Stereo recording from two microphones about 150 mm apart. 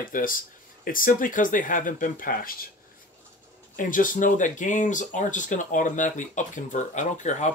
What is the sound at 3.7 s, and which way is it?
Speech, 65° left (ahead or behind).